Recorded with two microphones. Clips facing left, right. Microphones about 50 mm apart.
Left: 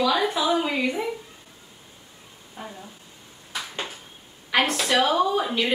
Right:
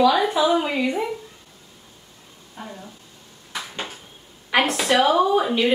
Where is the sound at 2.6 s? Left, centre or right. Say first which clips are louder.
Right 1 dB; centre.